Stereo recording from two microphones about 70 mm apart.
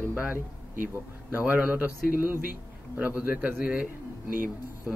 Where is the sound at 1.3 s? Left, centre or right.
Right.